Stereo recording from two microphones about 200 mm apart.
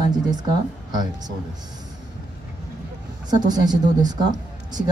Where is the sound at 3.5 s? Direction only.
20° right (ahead or behind).